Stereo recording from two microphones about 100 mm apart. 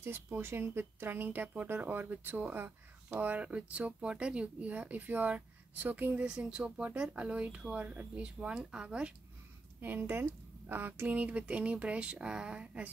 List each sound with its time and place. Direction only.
0.0 s speech: 25° right (ahead or behind)
9.8 s speech: 20° right (ahead or behind)